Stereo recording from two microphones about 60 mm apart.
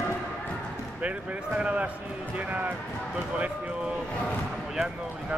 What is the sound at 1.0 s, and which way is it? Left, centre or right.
Speech, right.